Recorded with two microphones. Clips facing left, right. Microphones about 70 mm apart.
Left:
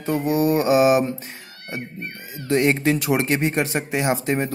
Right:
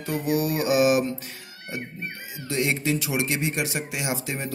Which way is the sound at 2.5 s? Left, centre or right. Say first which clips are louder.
Left 6 dB; left.